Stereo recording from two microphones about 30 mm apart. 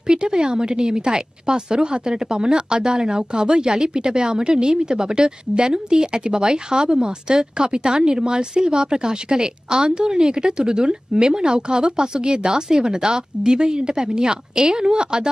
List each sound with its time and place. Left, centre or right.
0.0 s a woman's voice: right